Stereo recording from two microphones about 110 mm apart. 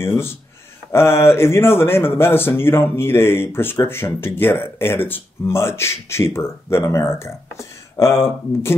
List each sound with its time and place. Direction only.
0.0 s a man's voice: 25° left (ahead or behind)